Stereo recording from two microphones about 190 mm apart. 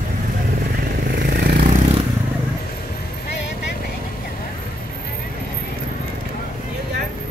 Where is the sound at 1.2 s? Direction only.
55° right (ahead or behind).